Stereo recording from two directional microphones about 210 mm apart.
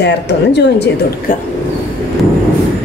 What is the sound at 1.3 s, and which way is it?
Speech, 40° left (ahead or behind).